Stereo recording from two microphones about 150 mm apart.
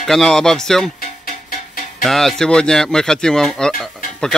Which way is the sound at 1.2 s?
70° left (ahead or behind).